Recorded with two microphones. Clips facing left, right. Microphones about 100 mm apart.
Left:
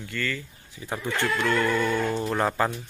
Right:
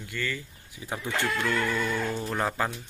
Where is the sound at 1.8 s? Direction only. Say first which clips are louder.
Left 4 dB; 20° left (ahead or behind).